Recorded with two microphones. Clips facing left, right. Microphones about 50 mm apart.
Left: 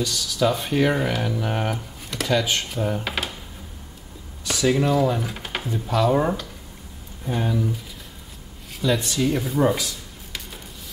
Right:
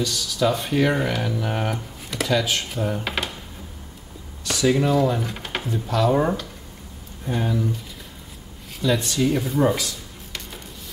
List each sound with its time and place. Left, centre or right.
0.0 s speech: centre
4.5 s speech: centre